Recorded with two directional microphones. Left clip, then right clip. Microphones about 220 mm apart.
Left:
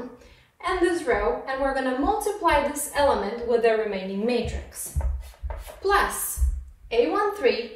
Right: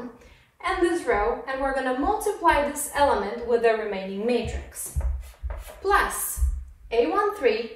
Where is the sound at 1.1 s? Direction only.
Centre (ahead or behind).